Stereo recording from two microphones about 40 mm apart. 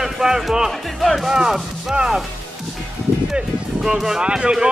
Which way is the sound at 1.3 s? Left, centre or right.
Centre.